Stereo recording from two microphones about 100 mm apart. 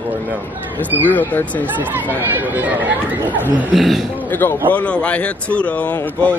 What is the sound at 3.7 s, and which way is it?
Speech, centre (ahead or behind).